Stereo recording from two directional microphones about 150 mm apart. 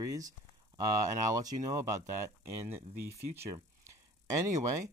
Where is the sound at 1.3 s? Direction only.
25° right (ahead or behind).